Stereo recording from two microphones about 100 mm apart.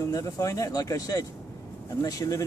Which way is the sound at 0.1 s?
35° left (ahead or behind).